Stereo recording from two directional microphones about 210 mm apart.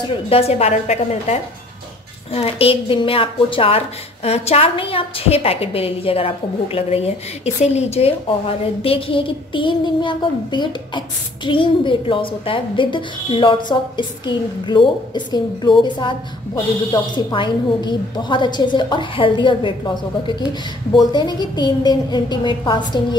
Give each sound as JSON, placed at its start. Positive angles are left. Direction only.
{"t": 0.3, "sound": "a woman's voice", "side_deg": 30}